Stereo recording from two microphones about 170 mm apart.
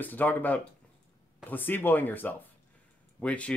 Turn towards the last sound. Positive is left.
turn(degrees=5)  # may be behind; listen again after turning